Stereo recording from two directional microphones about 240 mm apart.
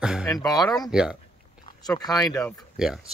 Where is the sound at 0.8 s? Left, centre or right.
Centre.